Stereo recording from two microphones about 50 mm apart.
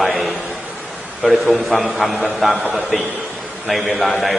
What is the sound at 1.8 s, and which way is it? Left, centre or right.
Speech, centre.